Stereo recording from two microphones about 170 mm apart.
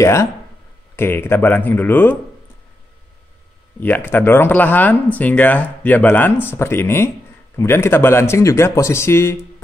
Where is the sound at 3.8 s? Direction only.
10° left (ahead or behind).